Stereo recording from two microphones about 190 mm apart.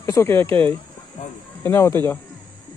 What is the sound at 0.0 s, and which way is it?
Speech, 15° left (ahead or behind).